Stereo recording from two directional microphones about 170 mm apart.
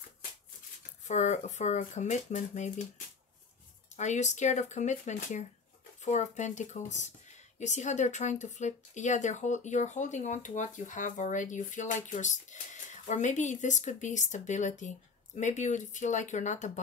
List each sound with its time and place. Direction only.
1.0 s speech: 45° left (ahead or behind)
3.9 s speech: 45° left (ahead or behind)